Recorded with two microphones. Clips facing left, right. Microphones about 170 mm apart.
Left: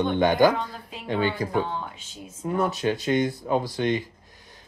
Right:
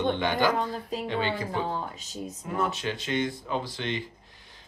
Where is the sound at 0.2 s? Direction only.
45° left (ahead or behind).